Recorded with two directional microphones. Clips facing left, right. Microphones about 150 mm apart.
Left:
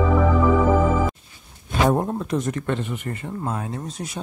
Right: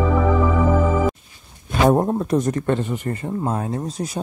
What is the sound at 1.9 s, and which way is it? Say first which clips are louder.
Speech: right 4 dB; 35° right (ahead or behind).